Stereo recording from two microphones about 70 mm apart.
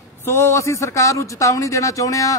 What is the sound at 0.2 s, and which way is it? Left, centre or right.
A man's voice, left.